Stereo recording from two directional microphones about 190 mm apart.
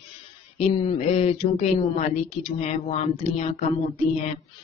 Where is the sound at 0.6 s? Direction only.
30° left (ahead or behind).